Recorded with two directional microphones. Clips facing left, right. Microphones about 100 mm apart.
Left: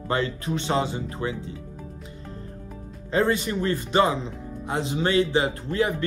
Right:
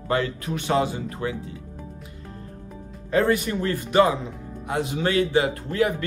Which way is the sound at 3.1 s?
25° left (ahead or behind).